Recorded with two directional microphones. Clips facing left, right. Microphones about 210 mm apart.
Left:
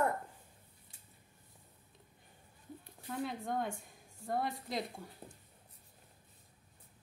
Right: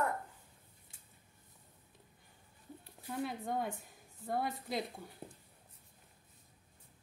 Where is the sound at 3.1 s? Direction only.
Centre (ahead or behind).